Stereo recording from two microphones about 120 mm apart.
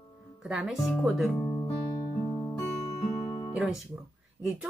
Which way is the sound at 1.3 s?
15° left (ahead or behind).